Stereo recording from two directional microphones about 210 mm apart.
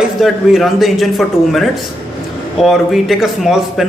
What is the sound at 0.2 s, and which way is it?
A man's voice, centre (ahead or behind).